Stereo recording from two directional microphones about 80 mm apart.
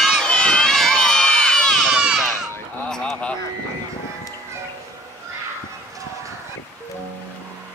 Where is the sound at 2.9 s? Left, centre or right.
Centre.